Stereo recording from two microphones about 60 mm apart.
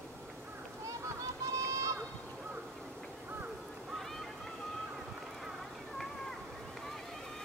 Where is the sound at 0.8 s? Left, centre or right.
Right.